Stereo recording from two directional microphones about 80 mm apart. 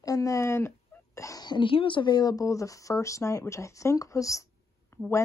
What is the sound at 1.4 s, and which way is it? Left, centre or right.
Speech, left.